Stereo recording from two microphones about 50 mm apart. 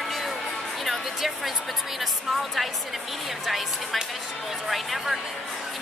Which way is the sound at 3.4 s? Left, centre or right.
Centre.